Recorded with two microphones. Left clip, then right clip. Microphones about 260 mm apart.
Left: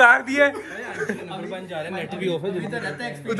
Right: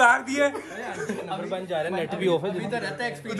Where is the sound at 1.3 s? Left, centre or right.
Right.